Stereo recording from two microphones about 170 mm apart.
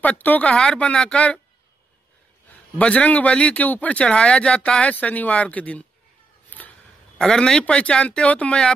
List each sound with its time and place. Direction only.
0.0 s speech: 10° left (ahead or behind)
2.8 s speech: 5° left (ahead or behind)
6.5 s a sound: 10° left (ahead or behind)
7.2 s speech: 5° left (ahead or behind)